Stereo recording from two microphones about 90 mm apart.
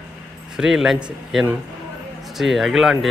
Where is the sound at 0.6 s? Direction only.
5° right (ahead or behind).